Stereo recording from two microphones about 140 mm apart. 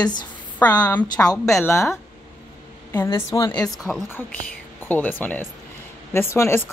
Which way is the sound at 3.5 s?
5° left (ahead or behind).